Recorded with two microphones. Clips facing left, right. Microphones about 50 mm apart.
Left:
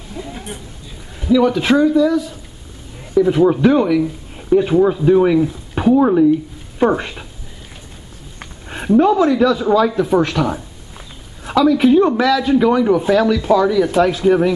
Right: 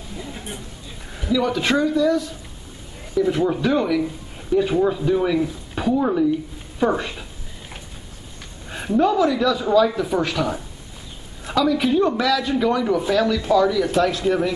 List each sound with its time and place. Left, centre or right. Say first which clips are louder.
0.2 s a man's voice: left 5 dB; centre; by 6.2 s left
6.8 s speech: left 5 dB; left
8.9 s a man's voice: left 5 dB; centre